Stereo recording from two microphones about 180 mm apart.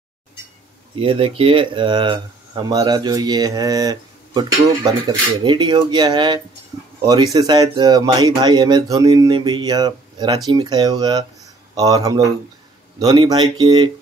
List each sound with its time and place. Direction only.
0.9 s speech: 30° right (ahead or behind)